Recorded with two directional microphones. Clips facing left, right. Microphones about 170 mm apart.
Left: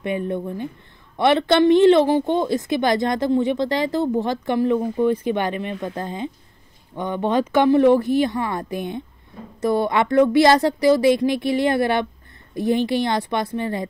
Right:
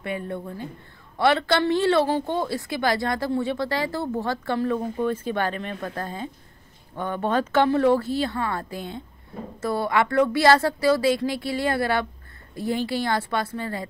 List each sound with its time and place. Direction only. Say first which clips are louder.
0.0 s a woman's voice: left 6 dB; 20° left (ahead or behind)